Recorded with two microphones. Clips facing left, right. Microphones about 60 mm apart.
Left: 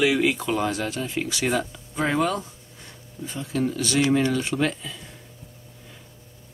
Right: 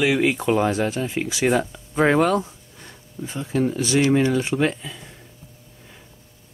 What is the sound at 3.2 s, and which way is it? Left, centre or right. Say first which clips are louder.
Speech: right 3 dB; right.